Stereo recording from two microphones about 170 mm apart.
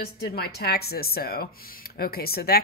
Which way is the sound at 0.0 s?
65° left (ahead or behind).